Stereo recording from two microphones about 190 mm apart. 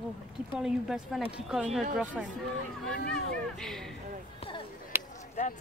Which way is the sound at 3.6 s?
Centre (ahead or behind).